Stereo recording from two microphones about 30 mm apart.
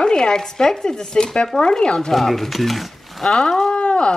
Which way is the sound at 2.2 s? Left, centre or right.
Centre.